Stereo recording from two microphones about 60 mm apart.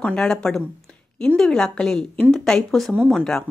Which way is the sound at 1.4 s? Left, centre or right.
Centre.